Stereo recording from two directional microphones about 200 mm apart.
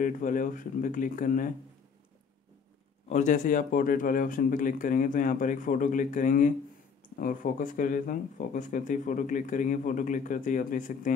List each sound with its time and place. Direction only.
0.0 s speech: 40° left (ahead or behind)
3.1 s speech: 35° left (ahead or behind)